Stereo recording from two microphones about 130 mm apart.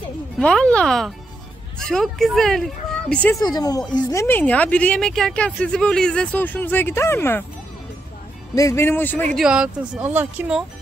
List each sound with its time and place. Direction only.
0.4 s a woman's voice: 10° left (ahead or behind)
3.3 s a woman's voice: 30° left (ahead or behind)
8.5 s a woman's voice: 20° left (ahead or behind)
9.4 s speech: 5° right (ahead or behind)